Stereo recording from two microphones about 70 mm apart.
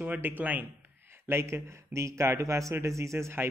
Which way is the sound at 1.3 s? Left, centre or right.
Right.